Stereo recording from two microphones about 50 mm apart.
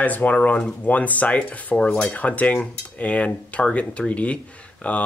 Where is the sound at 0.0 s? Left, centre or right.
Left.